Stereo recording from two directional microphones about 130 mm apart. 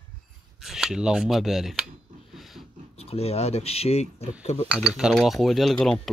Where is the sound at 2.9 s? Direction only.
50° left (ahead or behind).